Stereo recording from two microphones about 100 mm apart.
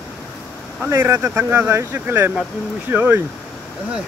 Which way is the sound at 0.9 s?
25° right (ahead or behind).